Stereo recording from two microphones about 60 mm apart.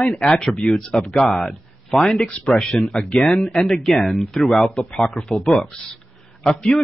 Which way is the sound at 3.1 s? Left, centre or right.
Centre.